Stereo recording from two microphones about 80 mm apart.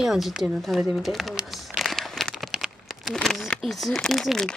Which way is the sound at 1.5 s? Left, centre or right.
Centre.